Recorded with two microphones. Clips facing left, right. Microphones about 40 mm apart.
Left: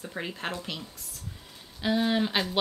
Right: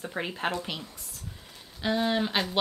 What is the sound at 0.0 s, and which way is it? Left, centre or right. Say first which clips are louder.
Speech: right 3 dB; centre.